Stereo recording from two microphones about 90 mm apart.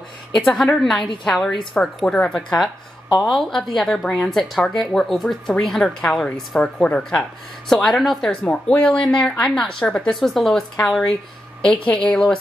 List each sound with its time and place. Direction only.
0.4 s speech: 5° left (ahead or behind)
8.5 s speech: 15° left (ahead or behind)
11.7 s speech: 70° left (ahead or behind)